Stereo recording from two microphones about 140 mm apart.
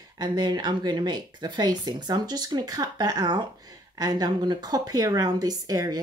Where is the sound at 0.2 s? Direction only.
30° right (ahead or behind).